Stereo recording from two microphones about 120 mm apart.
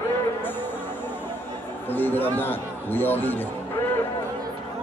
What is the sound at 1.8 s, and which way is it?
Speech, 15° left (ahead or behind).